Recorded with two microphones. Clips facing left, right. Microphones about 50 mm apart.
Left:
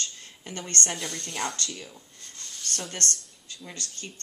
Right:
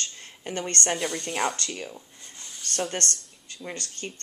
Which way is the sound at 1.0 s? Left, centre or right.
Centre.